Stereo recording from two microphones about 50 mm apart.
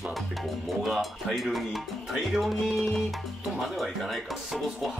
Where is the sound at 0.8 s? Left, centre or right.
Centre.